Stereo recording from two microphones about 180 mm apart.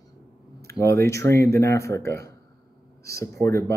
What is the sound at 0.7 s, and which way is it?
Speech, 15° left (ahead or behind).